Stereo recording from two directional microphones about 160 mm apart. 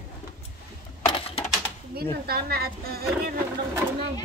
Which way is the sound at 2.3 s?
75° right (ahead or behind).